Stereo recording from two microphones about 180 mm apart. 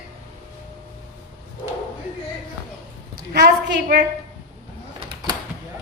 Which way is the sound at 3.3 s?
65° right (ahead or behind).